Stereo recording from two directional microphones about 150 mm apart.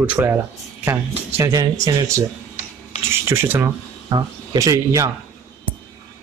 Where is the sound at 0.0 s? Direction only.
10° right (ahead or behind).